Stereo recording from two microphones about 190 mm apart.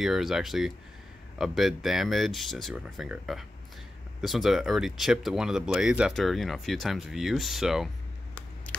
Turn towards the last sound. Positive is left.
turn(degrees=0)  # may be behind; listen again after turning